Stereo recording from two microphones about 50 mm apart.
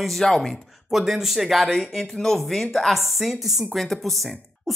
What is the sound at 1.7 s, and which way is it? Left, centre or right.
Speech, centre.